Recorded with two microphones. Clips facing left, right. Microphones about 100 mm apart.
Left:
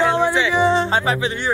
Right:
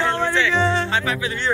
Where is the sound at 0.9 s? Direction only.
30° left (ahead or behind).